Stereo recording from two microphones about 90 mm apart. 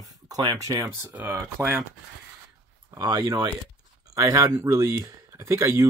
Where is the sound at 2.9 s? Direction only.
40° right (ahead or behind).